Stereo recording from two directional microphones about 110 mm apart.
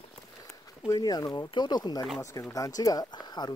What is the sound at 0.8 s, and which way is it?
Speech, 35° left (ahead or behind).